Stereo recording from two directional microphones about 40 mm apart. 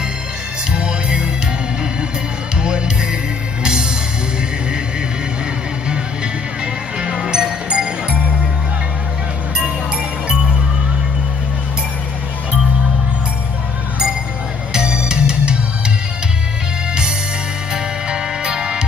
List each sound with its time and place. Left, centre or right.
0.7 s music: right
2.5 s music: right
6.6 s music: right
10.2 s music: right
14.9 s music: right
17.7 s music: centre